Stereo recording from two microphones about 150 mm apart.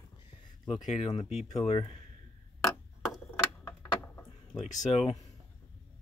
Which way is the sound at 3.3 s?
15° left (ahead or behind).